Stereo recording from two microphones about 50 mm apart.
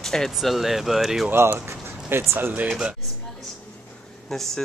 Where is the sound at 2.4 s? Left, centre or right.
Right.